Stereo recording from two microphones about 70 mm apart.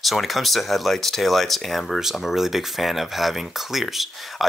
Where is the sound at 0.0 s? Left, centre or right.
Centre.